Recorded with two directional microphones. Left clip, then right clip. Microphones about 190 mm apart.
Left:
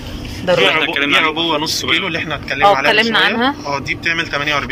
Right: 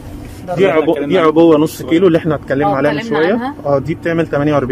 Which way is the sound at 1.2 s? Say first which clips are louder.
Right 7 dB; 60° right (ahead or behind).